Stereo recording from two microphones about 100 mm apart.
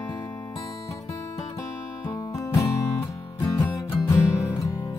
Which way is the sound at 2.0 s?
35° left (ahead or behind).